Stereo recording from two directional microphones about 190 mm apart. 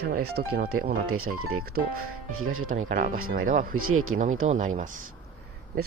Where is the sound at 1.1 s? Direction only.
90° right.